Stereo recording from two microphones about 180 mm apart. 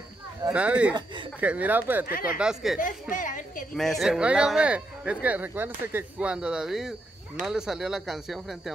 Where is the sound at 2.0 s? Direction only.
55° left (ahead or behind).